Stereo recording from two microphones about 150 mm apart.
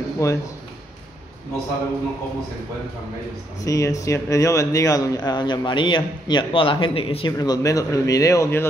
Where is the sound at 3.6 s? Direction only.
20° left (ahead or behind); by 7.3 s 40° left (ahead or behind).